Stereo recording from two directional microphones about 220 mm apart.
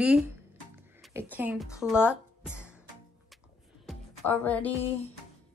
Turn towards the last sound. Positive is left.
turn(degrees=5)  # may be behind; listen again after turning